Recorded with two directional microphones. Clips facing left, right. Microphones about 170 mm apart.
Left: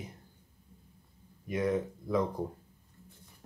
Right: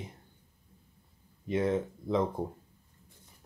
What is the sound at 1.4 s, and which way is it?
Speech, 25° right (ahead or behind).